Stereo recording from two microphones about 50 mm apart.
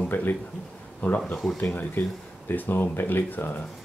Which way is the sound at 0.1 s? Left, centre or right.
Left.